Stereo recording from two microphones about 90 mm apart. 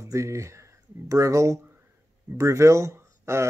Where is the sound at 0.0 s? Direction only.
35° right (ahead or behind).